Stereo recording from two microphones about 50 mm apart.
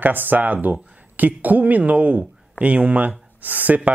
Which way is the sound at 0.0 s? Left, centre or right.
Right.